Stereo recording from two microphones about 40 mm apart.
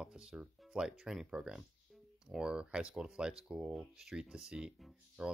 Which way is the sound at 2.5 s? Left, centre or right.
Right.